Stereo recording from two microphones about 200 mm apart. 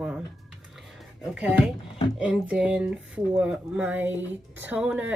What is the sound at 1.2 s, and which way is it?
A woman's voice, 5° right (ahead or behind).